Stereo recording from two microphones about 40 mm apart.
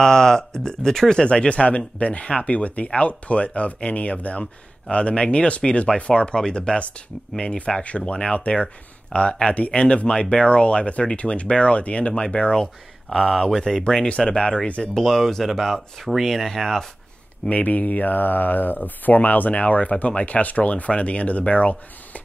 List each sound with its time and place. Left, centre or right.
0.0 s speech: centre
1.2 s speech: left
13.1 s speech: centre
14.0 s speech: left
15.0 s speech: centre
17.5 s speech: left
19.6 s speech: left